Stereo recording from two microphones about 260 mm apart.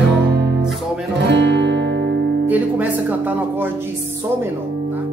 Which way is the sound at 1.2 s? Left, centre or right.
Right.